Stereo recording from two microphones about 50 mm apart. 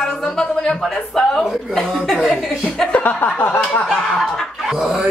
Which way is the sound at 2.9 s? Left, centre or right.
Left.